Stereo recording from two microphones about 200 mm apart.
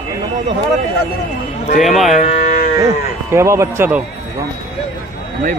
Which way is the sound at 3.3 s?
15° right (ahead or behind).